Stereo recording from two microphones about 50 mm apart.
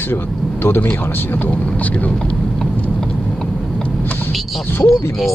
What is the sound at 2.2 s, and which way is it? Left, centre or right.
Vehicle, centre.